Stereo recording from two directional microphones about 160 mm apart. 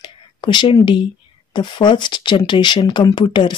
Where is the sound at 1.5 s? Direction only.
30° left (ahead or behind).